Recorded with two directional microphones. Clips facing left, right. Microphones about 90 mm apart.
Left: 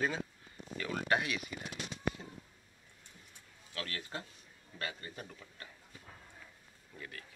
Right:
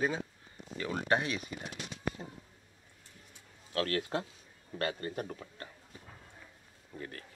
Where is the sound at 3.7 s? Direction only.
60° right (ahead or behind); by 5.6 s 40° right (ahead or behind).